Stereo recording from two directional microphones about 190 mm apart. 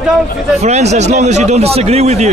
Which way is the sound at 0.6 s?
35° right (ahead or behind).